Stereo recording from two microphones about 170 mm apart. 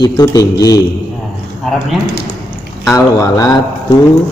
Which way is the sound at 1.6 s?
Centre (ahead or behind).